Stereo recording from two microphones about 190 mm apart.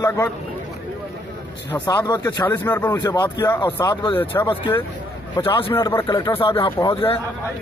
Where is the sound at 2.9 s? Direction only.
20° left (ahead or behind).